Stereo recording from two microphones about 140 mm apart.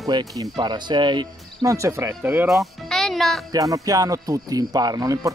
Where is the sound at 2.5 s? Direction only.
Centre (ahead or behind).